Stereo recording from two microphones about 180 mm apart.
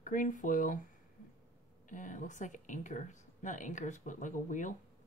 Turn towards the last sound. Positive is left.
turn(degrees=45)  # may be behind; listen again after turning